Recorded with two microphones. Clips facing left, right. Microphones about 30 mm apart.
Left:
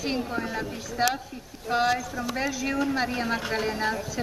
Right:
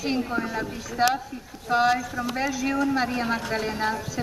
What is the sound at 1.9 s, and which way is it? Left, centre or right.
Speech, centre.